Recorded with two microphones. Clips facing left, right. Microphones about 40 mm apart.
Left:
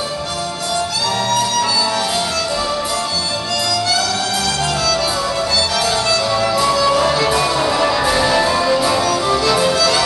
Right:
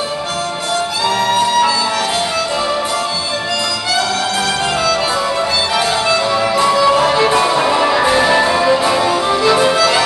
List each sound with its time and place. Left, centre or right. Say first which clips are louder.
1.2 s music: right 5 dB; right
5.8 s music: right 2 dB; right